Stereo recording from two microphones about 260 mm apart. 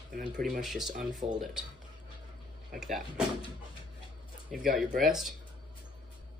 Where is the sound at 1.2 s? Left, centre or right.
Right.